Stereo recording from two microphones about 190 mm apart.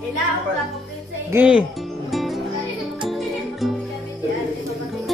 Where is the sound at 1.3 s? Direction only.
5° right (ahead or behind).